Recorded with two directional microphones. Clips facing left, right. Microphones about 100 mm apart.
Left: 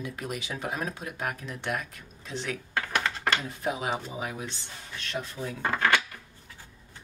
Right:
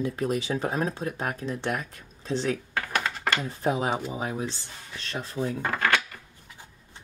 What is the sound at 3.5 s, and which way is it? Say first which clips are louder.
Speech: right 4 dB; 30° right (ahead or behind).